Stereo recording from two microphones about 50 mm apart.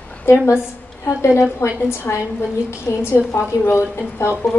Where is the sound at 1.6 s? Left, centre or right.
Left.